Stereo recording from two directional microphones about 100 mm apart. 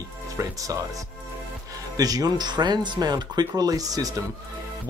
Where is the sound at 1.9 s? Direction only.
40° right (ahead or behind).